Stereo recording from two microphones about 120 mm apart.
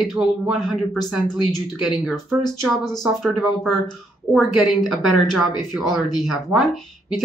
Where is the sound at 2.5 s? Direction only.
35° left (ahead or behind).